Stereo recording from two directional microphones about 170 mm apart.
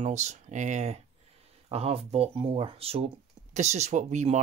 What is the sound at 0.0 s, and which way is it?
Speech, 40° right (ahead or behind).